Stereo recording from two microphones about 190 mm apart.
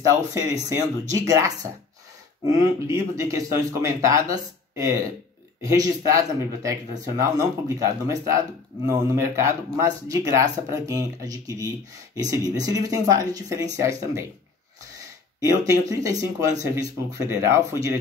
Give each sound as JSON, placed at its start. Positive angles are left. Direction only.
{"t": 0.0, "sound": "speech", "side_deg": -15}
{"t": 15.9, "sound": "speech", "side_deg": -20}